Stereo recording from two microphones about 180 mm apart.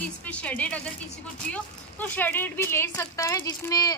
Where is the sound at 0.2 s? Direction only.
5° left (ahead or behind).